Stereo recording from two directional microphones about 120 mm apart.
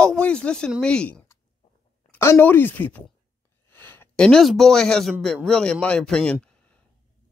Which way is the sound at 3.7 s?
20° left (ahead or behind).